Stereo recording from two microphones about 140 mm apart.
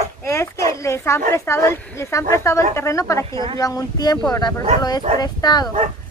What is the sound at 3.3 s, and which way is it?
Speech, 35° right (ahead or behind).